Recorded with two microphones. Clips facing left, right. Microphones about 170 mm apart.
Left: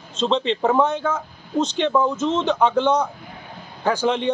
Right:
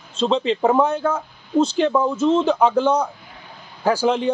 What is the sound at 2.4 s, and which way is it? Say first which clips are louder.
A man's voice: right 2 dB; 10° right (ahead or behind).